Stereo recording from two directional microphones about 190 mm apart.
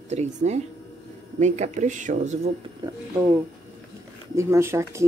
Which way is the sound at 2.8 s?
20° right (ahead or behind).